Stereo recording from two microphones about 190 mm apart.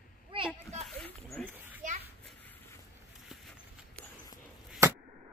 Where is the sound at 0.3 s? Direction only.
25° right (ahead or behind).